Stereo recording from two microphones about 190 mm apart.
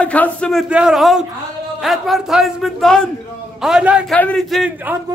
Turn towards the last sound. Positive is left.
turn(degrees=-5)  # may be behind; listen again after turning